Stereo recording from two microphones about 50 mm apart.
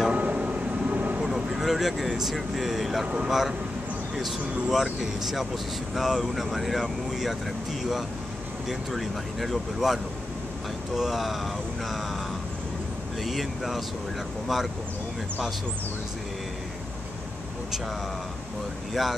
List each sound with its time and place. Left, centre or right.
0.1 s vehicle: right
1.2 s speech: centre
8.6 s speech: centre
11.0 s speech: centre
13.2 s speech: centre
19.0 s speech: centre